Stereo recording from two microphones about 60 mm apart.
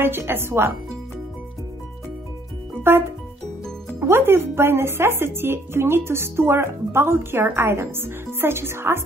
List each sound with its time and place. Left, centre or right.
0.0 s speech: right
2.9 s speech: right